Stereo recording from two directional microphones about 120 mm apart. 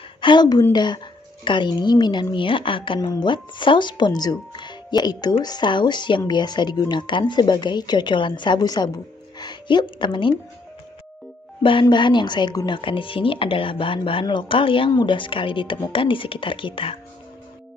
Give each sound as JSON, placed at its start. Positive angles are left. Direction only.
{"t": 0.2, "sound": "speech", "side_deg": 40}
{"t": 11.6, "sound": "speech", "side_deg": 45}